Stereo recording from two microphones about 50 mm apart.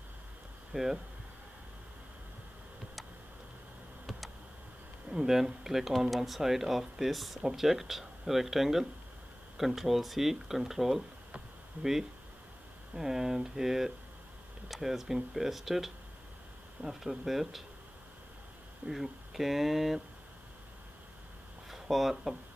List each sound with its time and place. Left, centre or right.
0.7 s speech: right
5.1 s speech: centre
18.9 s speech: centre
21.6 s speech: centre